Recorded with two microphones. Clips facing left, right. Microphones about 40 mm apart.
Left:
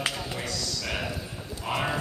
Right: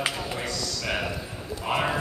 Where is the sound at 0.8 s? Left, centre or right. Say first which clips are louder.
Right 4 dB; centre.